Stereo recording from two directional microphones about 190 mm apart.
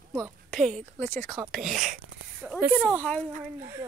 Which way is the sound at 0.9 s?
10° left (ahead or behind).